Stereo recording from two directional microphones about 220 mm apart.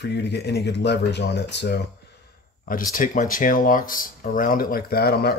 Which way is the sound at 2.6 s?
40° left (ahead or behind).